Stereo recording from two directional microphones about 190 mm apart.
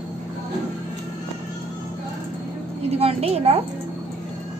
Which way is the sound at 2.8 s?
30° right (ahead or behind).